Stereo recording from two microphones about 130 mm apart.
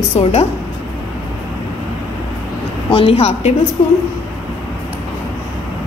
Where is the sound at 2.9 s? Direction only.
50° left (ahead or behind).